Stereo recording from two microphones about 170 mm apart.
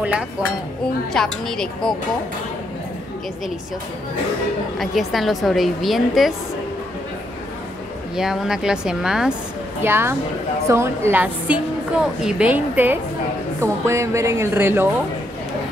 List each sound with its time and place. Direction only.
1.1 s a woman's voice: 5° left (ahead or behind)
4.7 s a woman's voice: centre (ahead or behind)
8.2 s a woman's voice: 5° right (ahead or behind)
9.8 s a woman's voice: 15° right (ahead or behind)